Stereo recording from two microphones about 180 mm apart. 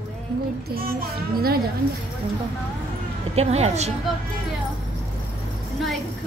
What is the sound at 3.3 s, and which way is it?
Speech, 35° right (ahead or behind).